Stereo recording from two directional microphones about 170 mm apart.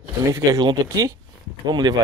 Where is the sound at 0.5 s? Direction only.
20° right (ahead or behind).